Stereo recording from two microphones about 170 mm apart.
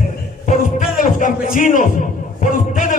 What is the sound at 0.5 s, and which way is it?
A man's voice, 50° left (ahead or behind).